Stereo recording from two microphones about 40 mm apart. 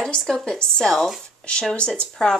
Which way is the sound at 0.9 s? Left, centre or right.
Centre.